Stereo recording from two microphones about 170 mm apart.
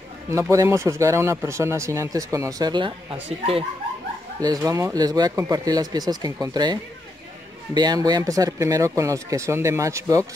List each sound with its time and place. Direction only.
0.3 s speech: 15° right (ahead or behind); by 3.6 s 35° right (ahead or behind)
4.4 s speech: 20° right (ahead or behind)